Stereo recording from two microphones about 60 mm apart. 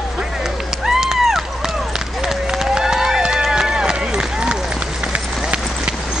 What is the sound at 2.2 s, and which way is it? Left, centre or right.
Run, centre.